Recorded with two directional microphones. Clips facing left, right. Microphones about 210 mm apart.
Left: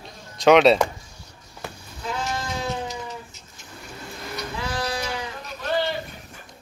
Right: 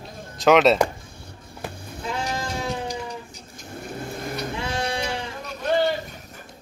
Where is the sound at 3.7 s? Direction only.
50° right (ahead or behind).